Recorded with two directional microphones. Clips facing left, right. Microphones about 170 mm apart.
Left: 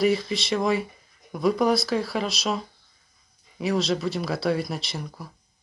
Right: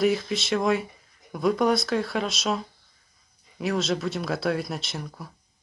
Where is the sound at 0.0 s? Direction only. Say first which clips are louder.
Left 1 dB; centre (ahead or behind).